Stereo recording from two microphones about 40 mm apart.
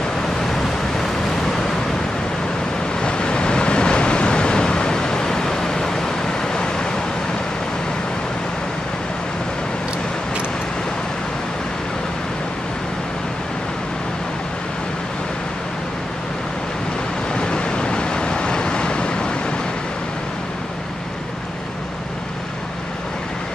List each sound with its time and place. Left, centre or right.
0.5 s waves: centre
3.0 s vehicle: left
17.3 s vehicle: left